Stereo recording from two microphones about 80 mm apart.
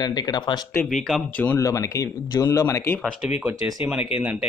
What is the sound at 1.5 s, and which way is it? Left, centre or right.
Speech, left.